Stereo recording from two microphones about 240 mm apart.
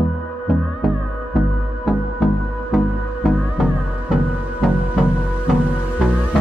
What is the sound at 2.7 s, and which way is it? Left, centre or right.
Music, centre.